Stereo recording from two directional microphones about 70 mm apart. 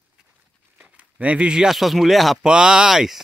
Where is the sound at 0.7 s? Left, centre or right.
Centre.